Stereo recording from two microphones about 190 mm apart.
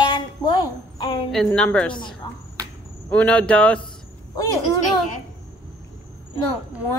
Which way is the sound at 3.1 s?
5° left (ahead or behind).